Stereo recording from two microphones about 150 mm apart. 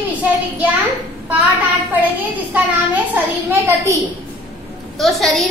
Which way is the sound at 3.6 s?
20° right (ahead or behind).